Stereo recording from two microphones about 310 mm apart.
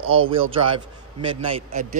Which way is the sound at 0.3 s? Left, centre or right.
Centre.